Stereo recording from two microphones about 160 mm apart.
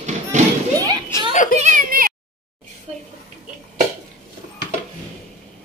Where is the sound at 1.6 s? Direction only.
55° right (ahead or behind).